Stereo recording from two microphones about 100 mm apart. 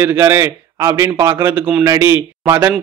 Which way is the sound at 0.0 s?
25° right (ahead or behind).